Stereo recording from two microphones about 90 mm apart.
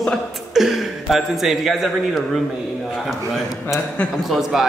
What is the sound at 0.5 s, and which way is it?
A man's voice, 5° right (ahead or behind).